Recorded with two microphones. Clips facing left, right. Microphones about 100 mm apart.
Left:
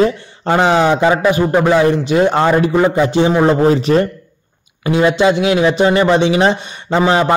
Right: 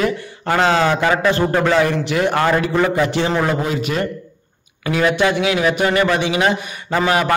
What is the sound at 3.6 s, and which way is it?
Speech, 35° left (ahead or behind).